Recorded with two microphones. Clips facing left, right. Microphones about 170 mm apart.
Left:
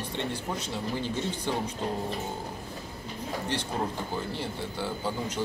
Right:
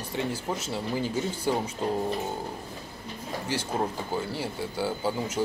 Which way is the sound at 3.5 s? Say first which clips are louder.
Right 4 dB; 5° right (ahead or behind).